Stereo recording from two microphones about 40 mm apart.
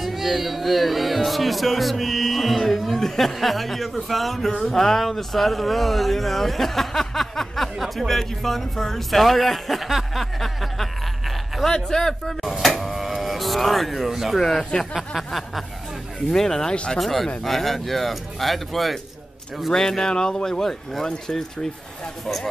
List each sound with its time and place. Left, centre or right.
0.0 s speech: centre
7.7 s speech: centre
12.4 s a sound: centre
14.1 s speech: centre
16.3 s speech: centre
16.7 s speech: left
17.0 s speech: centre
19.7 s speech: centre